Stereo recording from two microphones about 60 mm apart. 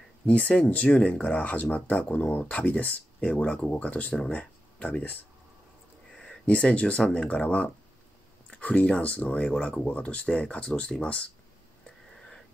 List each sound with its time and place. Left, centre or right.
0.3 s speech: left
6.1 s a sound: centre
7.2 s speech: left